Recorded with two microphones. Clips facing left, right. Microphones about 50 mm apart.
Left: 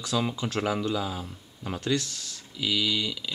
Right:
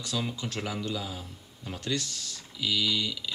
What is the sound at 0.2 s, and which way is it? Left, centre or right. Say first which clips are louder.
Speech: left 5 dB; centre.